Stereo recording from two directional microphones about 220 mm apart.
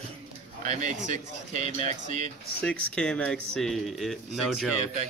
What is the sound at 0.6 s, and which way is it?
Speech, 35° right (ahead or behind).